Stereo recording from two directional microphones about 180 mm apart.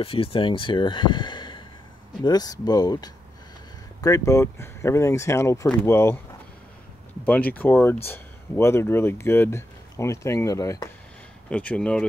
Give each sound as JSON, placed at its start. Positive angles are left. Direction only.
{"t": 0.0, "sound": "speech", "side_deg": 30}
{"t": 7.5, "sound": "speech", "side_deg": 10}
{"t": 11.5, "sound": "speech", "side_deg": 5}